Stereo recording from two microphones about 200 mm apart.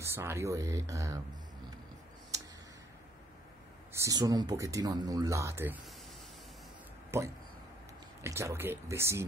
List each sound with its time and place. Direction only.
0.0 s speech: 10° right (ahead or behind)
3.9 s speech: 15° right (ahead or behind)
7.1 s speech: 15° right (ahead or behind)